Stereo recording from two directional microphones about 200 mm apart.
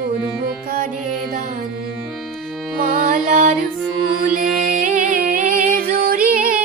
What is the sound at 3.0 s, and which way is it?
Music, 40° right (ahead or behind).